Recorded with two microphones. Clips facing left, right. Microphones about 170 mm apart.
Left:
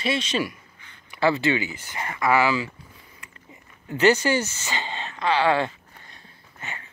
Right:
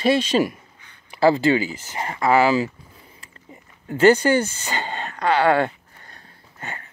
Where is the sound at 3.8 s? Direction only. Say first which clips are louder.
Right 4 dB; 55° right (ahead or behind).